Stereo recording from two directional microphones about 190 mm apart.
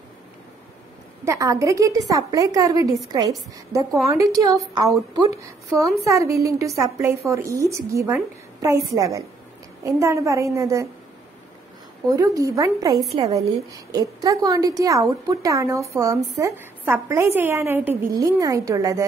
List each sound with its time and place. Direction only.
1.2 s a woman's voice: 15° right (ahead or behind)
12.1 s a woman's voice: 20° right (ahead or behind)